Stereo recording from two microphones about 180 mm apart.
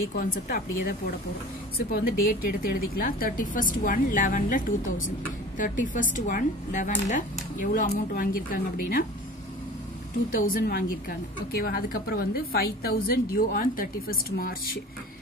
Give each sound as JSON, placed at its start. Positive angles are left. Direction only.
{"t": 0.2, "sound": "a woman's voice", "side_deg": 55}
{"t": 10.3, "sound": "a woman's voice", "side_deg": 50}